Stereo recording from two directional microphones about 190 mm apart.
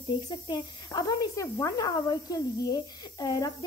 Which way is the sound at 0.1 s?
20° left (ahead or behind).